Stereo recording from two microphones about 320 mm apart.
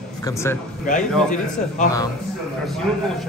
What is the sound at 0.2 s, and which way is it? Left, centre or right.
Speech, centre.